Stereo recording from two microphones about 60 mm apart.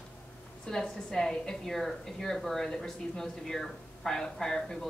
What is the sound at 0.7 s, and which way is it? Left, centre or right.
A woman's voice, centre.